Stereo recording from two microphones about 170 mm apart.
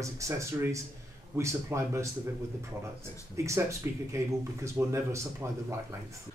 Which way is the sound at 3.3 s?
15° right (ahead or behind).